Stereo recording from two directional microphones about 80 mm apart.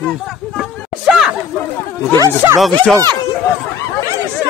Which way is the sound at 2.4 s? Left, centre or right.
Right.